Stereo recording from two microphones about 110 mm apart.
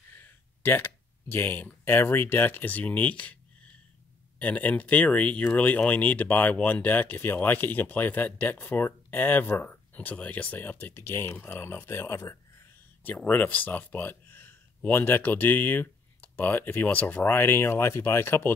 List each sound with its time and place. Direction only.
0.2 s speech: 20° left (ahead or behind)
4.4 s speech: 15° left (ahead or behind)
13.0 s speech: 15° left (ahead or behind)